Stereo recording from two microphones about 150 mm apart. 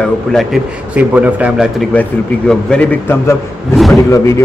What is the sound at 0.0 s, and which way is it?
A man's voice, centre (ahead or behind).